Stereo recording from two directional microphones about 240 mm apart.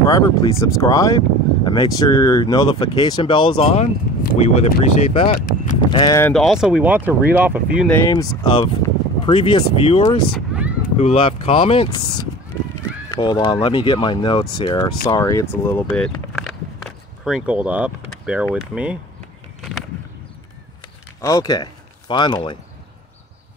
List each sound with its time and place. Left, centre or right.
0.0 s speech: centre
5.3 s speech: left
5.9 s speech: centre
6.3 s speech: centre
8.1 s speech: centre
10.3 s a sound: centre
11.0 s speech: left
13.1 s speech: centre
21.2 s speech: centre